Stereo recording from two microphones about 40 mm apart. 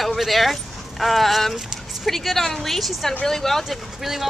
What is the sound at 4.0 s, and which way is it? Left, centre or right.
Speech, centre.